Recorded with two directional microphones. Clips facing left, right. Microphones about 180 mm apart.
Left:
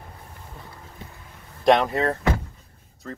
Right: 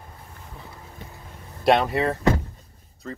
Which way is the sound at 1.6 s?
5° right (ahead or behind).